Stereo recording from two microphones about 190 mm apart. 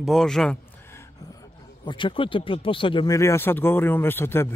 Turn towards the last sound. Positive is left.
turn(degrees=10)  # may be behind; listen again after turning